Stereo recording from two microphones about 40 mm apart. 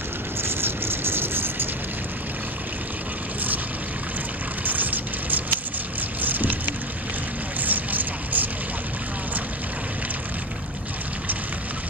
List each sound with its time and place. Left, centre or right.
0.4 s vehicle: right
4.6 s music: right
7.6 s vehicle: right